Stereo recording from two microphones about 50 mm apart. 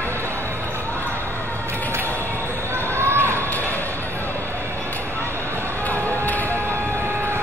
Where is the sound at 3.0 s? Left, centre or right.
Right.